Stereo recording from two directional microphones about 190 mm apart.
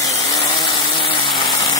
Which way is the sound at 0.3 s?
20° left (ahead or behind).